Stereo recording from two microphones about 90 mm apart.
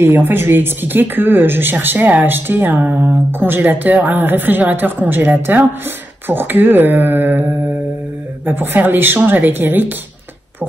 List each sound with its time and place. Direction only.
0.0 s speech: 25° right (ahead or behind)
8.5 s speech: 20° right (ahead or behind)